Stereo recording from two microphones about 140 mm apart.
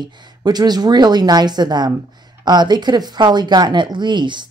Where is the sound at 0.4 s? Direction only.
30° right (ahead or behind).